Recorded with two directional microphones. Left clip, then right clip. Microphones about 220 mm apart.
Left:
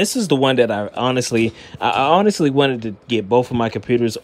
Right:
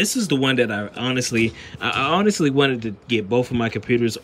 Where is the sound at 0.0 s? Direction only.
10° left (ahead or behind).